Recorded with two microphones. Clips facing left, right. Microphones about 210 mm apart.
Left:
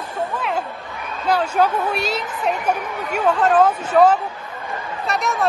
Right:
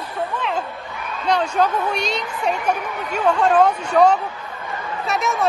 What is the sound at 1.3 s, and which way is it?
A man's voice, 5° left (ahead or behind).